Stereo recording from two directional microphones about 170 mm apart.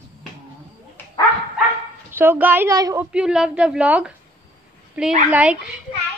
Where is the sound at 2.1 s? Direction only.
15° right (ahead or behind).